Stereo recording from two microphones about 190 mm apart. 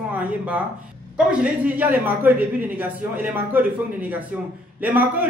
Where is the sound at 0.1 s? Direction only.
10° right (ahead or behind).